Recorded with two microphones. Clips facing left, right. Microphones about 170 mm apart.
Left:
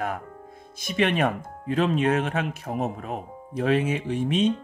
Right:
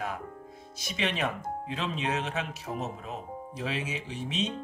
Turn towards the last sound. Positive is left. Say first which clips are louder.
# left 10 dB
turn(degrees=55)  # may be behind; listen again after turning